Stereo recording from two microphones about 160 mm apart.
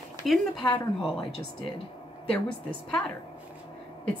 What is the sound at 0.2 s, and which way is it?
Speech, centre (ahead or behind).